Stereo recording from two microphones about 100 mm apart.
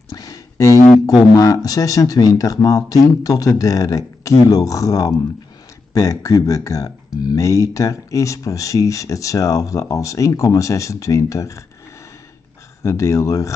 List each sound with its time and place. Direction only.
0.1 s a sound: 35° left (ahead or behind)
1.3 s speech: 35° left (ahead or behind)
12.8 s speech: 30° left (ahead or behind)